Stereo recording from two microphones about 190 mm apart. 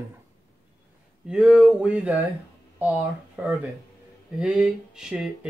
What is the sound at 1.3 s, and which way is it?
Speech, 5° right (ahead or behind).